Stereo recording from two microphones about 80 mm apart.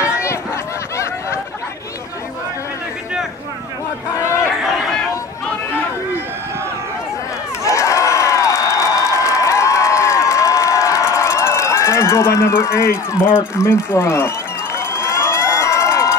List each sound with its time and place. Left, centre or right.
4.2 s crowd: left
7.6 s a sound: left
13.6 s speech: left
14.8 s run: left